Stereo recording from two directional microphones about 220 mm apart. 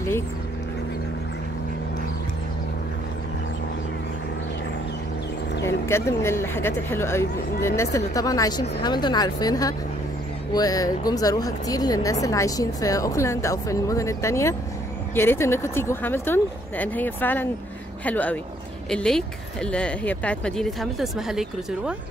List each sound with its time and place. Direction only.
5.9 s speech: 10° left (ahead or behind)